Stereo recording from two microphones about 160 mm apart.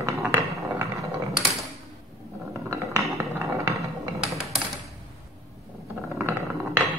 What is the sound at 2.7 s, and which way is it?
Music, 20° right (ahead or behind).